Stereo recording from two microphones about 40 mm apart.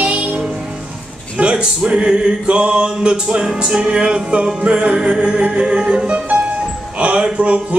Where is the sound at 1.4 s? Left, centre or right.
Right.